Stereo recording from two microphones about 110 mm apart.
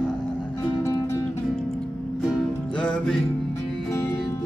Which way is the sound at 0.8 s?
25° left (ahead or behind).